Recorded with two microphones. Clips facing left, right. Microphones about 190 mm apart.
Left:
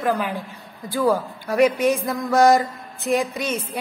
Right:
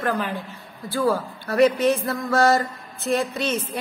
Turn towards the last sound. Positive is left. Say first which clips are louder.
# left 1 dB
turn(degrees=10)  # may be behind; listen again after turning